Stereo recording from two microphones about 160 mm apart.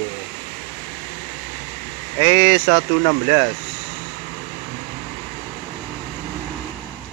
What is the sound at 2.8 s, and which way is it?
Speech, 30° right (ahead or behind).